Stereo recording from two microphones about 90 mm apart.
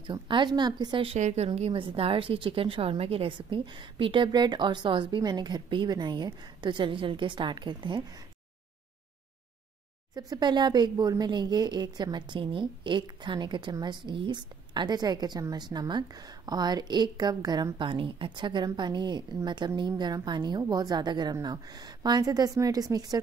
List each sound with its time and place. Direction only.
0.0 s speech: 65° right (ahead or behind)
1.0 s speech: 85° right; by 8.0 s 60° right (ahead or behind)
10.1 s a woman's voice: 55° right (ahead or behind)
17.7 s a woman's voice: 70° right (ahead or behind); by 23.1 s 45° right (ahead or behind)